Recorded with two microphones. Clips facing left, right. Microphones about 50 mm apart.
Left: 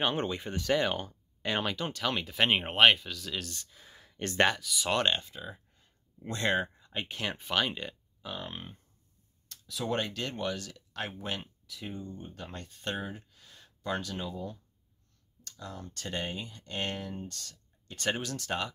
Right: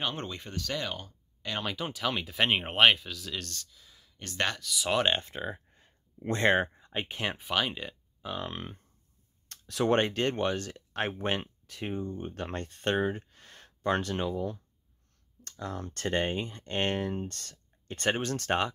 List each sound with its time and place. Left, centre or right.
0.1 s speech: centre; by 1.5 s left
1.6 s speech: centre
3.6 s a sound: left
4.5 s speech: centre
5.2 s speech: right
6.7 s speech: centre
7.3 s speech: centre
8.4 s speech: right
9.5 s speech: right
10.0 s speech: right
11.4 s a sound: right
11.9 s speech: right